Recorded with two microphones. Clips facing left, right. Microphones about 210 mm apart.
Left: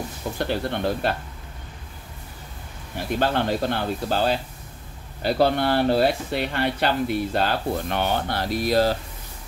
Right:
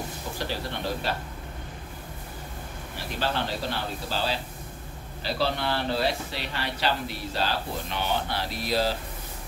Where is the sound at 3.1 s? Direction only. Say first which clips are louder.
Left 7 dB; 55° left (ahead or behind).